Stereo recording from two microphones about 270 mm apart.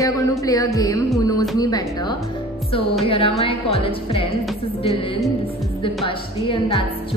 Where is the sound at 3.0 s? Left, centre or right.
Centre.